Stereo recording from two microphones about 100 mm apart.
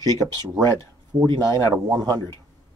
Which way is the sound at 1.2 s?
50° right (ahead or behind).